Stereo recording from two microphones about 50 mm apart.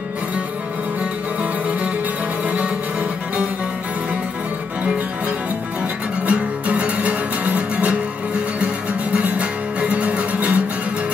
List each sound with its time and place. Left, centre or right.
2.4 s music: right
6.2 s music: right
9.2 s music: right